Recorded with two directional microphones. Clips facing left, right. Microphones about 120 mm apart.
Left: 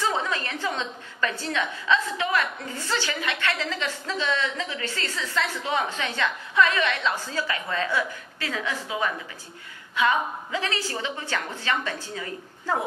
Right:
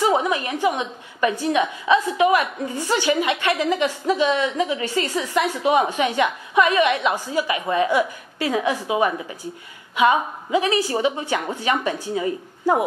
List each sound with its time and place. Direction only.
0.0 s a woman's voice: 15° right (ahead or behind)